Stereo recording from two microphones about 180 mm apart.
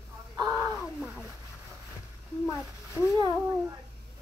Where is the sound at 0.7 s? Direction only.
5° right (ahead or behind).